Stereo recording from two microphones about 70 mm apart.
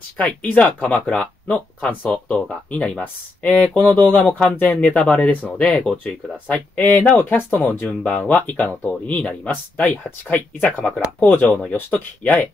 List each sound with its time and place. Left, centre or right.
0.2 s speech: left